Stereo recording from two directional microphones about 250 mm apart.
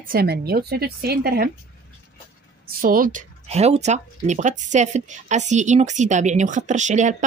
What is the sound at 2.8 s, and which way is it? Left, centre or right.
Speech, right.